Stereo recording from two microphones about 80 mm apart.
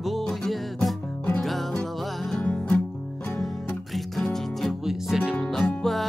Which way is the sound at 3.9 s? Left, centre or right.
Centre.